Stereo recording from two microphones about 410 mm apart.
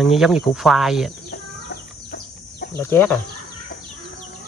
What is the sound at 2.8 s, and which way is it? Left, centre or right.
Speech, centre.